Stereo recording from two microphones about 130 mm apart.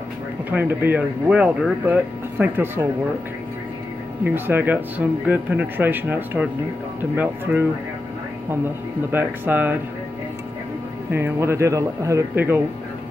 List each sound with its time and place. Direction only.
0.5 s speech: 15° right (ahead or behind)
4.2 s speech: 15° right (ahead or behind)
9.1 s speech: 15° right (ahead or behind)
11.1 s a man's voice: 15° right (ahead or behind)